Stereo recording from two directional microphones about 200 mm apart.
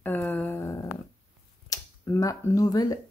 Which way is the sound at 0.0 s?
10° left (ahead or behind).